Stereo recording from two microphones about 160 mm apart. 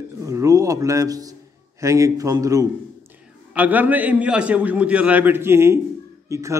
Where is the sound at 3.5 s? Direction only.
10° right (ahead or behind).